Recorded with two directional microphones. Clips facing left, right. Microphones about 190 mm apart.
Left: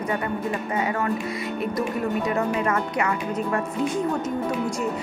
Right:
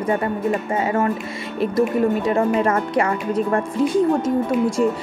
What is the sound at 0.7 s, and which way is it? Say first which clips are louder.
A woman's voice: right 4 dB; 25° right (ahead or behind).